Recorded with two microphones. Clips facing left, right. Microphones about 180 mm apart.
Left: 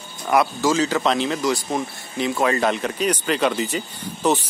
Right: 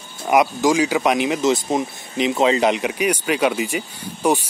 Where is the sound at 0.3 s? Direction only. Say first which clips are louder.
Right 3 dB; 15° right (ahead or behind).